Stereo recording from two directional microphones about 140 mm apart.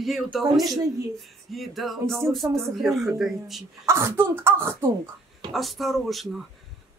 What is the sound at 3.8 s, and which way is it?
Speech, 20° right (ahead or behind).